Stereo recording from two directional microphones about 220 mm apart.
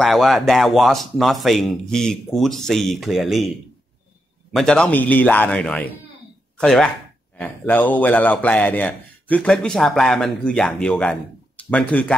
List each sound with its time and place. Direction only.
0.0 s a man's voice: centre (ahead or behind)